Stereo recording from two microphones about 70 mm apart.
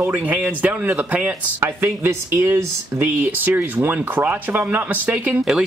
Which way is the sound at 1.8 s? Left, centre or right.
Right.